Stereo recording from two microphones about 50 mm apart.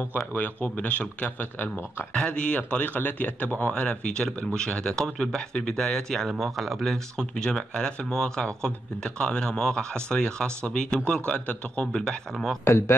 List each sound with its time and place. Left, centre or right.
0.3 s speech: left
2.1 s speech: centre
2.8 s speech: left; by 6.2 s centre
6.2 s speech: centre; by 11.9 s left
11.9 s speech: centre
12.6 s speech: left